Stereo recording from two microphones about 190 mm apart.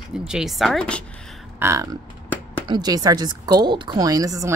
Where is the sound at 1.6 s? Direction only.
15° right (ahead or behind).